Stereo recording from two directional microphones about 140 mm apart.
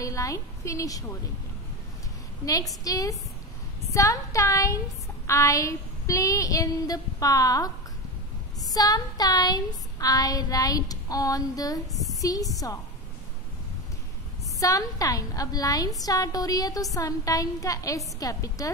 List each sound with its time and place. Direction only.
0.0 s a woman's voice: 25° left (ahead or behind)
2.4 s child singing: 25° left (ahead or behind)
8.7 s child singing: 25° left (ahead or behind)
12.2 s a woman's voice: 25° left (ahead or behind)
14.6 s child singing: 25° left (ahead or behind)